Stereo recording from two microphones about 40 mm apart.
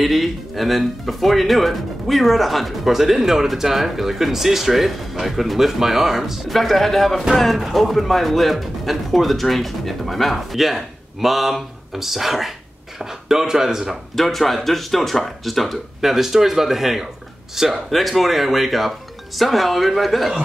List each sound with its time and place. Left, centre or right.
0.0 s speech: centre
6.5 s speech: centre
14.1 s speech: centre